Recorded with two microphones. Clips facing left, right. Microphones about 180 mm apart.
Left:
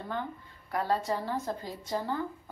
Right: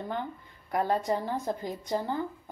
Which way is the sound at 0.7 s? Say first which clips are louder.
Right 2 dB; 20° right (ahead or behind).